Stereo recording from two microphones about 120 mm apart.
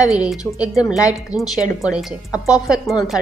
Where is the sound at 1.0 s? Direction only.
25° left (ahead or behind).